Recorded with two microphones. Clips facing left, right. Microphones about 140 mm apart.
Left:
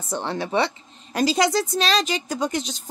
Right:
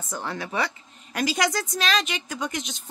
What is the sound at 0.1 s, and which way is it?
Speech, 30° left (ahead or behind).